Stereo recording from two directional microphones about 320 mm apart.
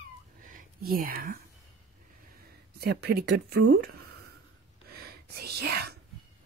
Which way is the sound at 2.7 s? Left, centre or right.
Right.